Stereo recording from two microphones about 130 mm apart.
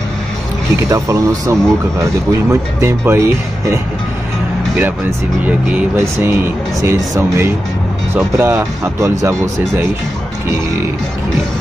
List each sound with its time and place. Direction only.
0.8 s speech: 25° right (ahead or behind)